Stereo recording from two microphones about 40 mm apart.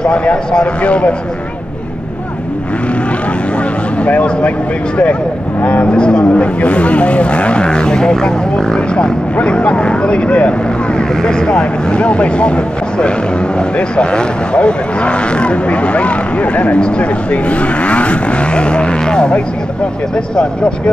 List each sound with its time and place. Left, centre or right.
0.0 s speech: left
4.0 s speech: left
5.6 s speech: left
11.2 s speech: centre
13.6 s speech: left